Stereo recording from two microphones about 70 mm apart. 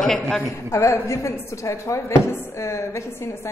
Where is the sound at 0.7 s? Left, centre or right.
Left.